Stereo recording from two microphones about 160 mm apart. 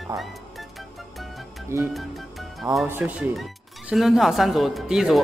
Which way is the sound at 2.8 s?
10° right (ahead or behind).